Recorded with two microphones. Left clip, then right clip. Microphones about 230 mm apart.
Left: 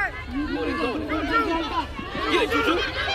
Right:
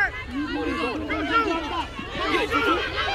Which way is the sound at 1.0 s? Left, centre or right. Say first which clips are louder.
Right 2 dB; left.